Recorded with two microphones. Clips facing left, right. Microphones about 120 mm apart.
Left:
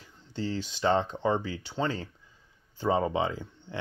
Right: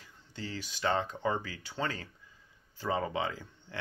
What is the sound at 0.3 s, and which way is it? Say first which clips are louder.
Speech: left 8 dB; 30° left (ahead or behind).